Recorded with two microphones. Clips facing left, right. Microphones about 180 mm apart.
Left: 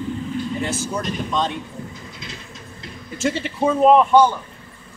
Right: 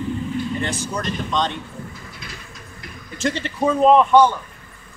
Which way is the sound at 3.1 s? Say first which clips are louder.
Left 1 dB; 5° left (ahead or behind).